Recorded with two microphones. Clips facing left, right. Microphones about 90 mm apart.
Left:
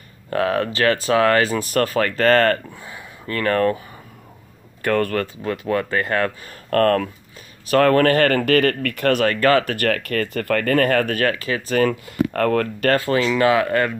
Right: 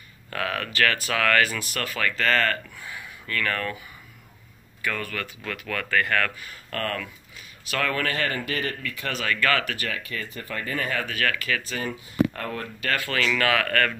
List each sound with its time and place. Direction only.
0.3 s speech: 30° left (ahead or behind)
2.7 s speech: 30° left (ahead or behind)
4.8 s speech: 55° left (ahead or behind)
5.2 s speech: 35° left (ahead or behind)
6.5 s speech: 50° left (ahead or behind)
9.3 s speech: 35° left (ahead or behind)
9.8 s speech: 60° left (ahead or behind)
11.2 s speech: 30° left (ahead or behind)
11.8 s speech: 90° left; by 12.9 s 65° left (ahead or behind)
12.9 s speech: 25° left (ahead or behind)